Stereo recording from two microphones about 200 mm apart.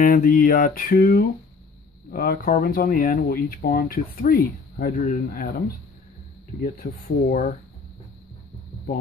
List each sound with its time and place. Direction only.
0.0 s speech: 45° left (ahead or behind)
6.6 s speech: 45° left (ahead or behind)